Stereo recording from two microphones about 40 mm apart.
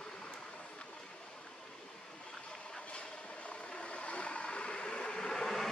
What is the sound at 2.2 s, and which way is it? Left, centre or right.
Vehicle, left.